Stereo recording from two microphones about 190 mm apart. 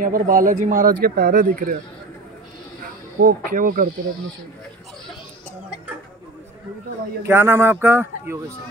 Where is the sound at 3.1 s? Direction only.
50° right (ahead or behind).